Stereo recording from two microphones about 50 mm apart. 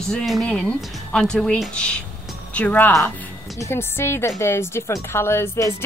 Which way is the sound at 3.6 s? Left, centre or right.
Left.